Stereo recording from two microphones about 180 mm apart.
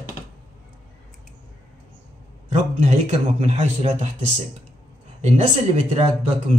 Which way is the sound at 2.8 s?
35° right (ahead or behind).